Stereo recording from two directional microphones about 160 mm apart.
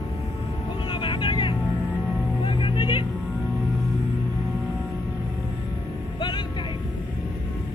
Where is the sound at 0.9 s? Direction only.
30° left (ahead or behind).